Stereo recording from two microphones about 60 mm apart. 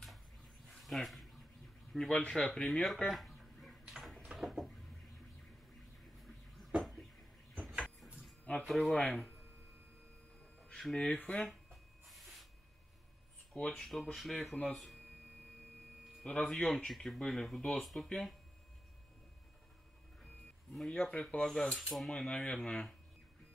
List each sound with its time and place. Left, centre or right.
0.7 s dog: centre
1.9 s speech: centre
3.1 s a sound: centre
6.8 s a sound: centre
8.6 s speech: centre
8.9 s speech: centre
10.8 s speech: centre
11.1 s speech: left
11.4 s a sound: centre
13.5 s speech: centre
16.3 s speech: centre
20.9 s speech: centre
22.1 s speech: centre